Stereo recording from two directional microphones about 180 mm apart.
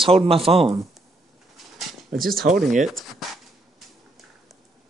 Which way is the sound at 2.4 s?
55° right (ahead or behind).